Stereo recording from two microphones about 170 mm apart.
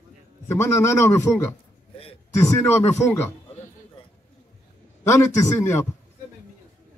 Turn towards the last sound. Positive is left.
turn(degrees=15)  # may be behind; listen again after turning